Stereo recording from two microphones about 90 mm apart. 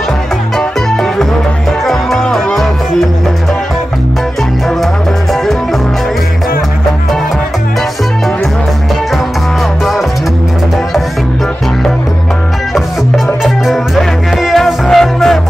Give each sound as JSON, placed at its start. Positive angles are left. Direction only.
{"t": 1.9, "sound": "music", "side_deg": 0}
{"t": 12.7, "sound": "music", "side_deg": 0}